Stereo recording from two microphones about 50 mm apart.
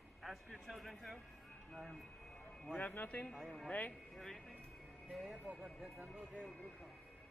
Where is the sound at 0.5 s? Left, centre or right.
Centre.